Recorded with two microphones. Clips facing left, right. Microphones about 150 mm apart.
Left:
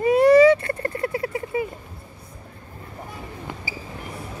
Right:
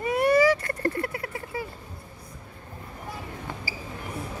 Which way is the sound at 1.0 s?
25° left (ahead or behind).